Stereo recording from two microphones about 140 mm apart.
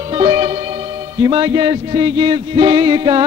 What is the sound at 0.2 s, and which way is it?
Music, 40° right (ahead or behind).